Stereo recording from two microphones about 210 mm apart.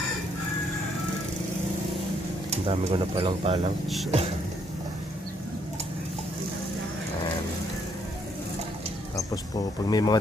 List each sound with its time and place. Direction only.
2.5 s speech: 30° right (ahead or behind)
9.8 s speech: 20° left (ahead or behind)